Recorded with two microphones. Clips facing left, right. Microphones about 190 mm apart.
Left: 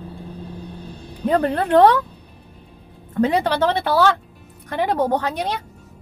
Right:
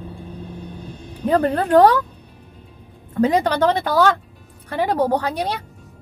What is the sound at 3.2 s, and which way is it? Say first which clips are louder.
Speech: right 1 dB; 40° right (ahead or behind).